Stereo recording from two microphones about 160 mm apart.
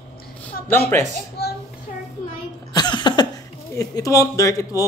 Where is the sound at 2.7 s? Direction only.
30° left (ahead or behind).